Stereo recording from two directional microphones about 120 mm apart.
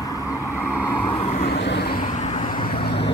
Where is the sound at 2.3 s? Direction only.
45° left (ahead or behind).